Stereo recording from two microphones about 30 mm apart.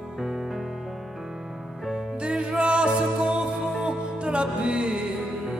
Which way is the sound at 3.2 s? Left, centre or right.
Right.